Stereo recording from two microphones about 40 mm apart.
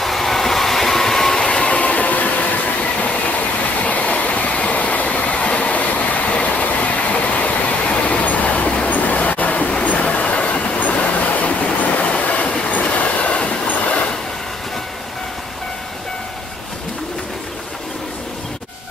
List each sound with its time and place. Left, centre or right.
0.0 s train: centre
1.4 s train: left
8.8 s a sound: left
9.8 s train: left
10.8 s vehicle: left
11.8 s train: left